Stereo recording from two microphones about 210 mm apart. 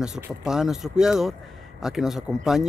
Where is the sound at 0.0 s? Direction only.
5° right (ahead or behind).